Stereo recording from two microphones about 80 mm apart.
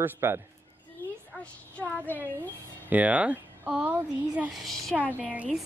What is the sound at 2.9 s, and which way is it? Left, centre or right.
Speech, centre.